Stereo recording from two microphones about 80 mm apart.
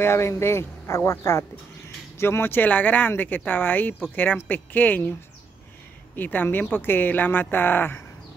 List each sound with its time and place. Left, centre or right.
0.0 s speech: left
2.1 s speech: left
6.1 s speech: left